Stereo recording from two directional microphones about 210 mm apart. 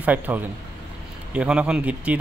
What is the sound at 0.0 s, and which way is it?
A man's voice, 5° right (ahead or behind).